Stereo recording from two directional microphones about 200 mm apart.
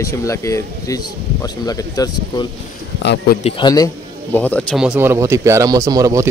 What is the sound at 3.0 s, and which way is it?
Speech, 60° left (ahead or behind).